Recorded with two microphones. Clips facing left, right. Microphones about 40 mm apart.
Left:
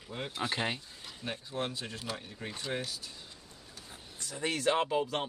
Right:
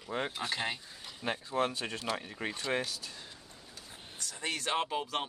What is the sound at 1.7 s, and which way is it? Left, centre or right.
Speech, right.